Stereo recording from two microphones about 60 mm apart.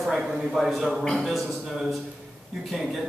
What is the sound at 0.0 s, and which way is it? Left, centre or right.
Speech, centre.